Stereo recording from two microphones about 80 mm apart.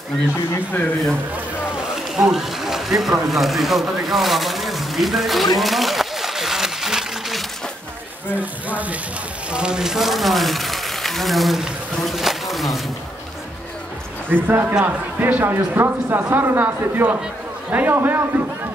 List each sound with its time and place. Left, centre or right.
1.8 s speech: centre
5.6 s a sound: centre
8.6 s speech: centre
14.3 s speech: right